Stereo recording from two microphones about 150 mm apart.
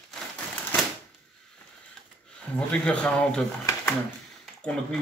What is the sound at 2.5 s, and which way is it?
Speech, 5° left (ahead or behind).